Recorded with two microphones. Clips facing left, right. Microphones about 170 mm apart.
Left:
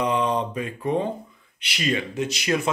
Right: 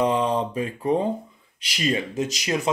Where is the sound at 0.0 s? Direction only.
30° right (ahead or behind).